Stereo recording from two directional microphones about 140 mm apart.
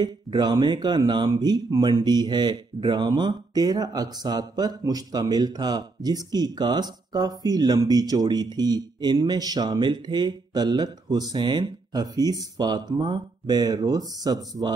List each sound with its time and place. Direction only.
0.0 s speech: 30° right (ahead or behind)